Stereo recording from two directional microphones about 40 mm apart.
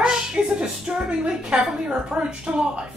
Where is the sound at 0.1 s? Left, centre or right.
Centre.